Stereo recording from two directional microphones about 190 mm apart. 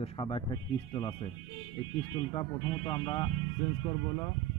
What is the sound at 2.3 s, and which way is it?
Speech, 25° left (ahead or behind).